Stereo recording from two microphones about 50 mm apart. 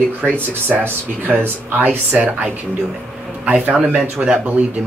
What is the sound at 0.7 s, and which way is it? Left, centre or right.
Speech, centre.